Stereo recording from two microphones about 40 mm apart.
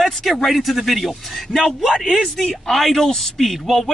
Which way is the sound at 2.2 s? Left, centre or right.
Centre.